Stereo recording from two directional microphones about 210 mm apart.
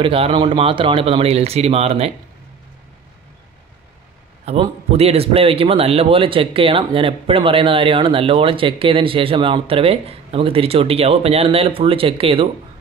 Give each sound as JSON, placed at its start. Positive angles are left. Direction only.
{"t": 0.0, "sound": "a man's voice", "side_deg": -25}
{"t": 4.5, "sound": "a man's voice", "side_deg": -30}